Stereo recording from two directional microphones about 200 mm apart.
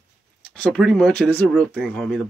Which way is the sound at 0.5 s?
5° left (ahead or behind).